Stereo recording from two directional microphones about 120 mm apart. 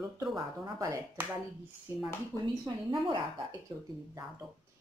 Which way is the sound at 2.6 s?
45° right (ahead or behind).